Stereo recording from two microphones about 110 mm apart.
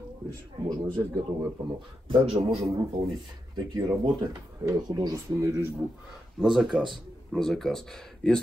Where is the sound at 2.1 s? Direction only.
55° right (ahead or behind).